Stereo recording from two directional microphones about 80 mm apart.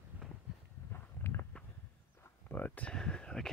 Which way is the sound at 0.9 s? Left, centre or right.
Left.